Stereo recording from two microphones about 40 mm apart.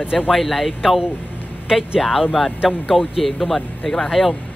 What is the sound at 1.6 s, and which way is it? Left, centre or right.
Speech, centre.